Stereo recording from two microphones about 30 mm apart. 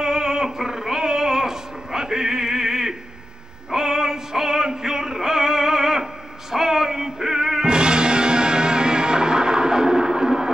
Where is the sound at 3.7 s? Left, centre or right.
Centre.